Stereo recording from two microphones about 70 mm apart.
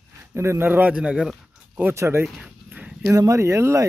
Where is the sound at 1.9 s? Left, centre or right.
Right.